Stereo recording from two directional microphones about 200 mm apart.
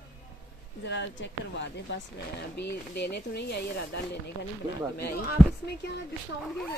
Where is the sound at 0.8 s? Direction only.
60° left (ahead or behind).